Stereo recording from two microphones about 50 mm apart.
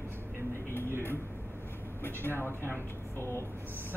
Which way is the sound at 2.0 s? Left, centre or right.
Left.